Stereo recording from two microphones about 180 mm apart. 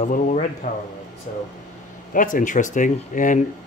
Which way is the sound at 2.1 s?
45° left (ahead or behind).